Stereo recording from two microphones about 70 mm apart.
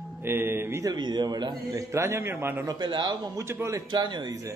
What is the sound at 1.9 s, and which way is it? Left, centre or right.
Speech, right.